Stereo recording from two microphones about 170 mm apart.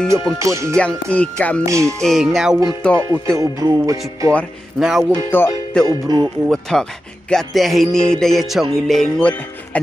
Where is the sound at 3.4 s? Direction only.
20° right (ahead or behind).